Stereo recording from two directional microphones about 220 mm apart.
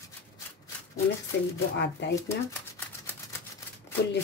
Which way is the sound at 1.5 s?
50° left (ahead or behind).